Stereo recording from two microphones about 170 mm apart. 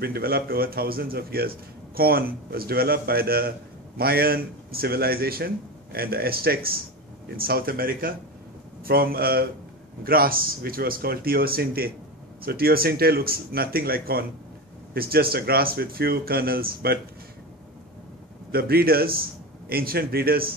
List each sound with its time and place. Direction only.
0.0 s a man's voice: 65° right (ahead or behind)
18.5 s a man's voice: 65° right (ahead or behind)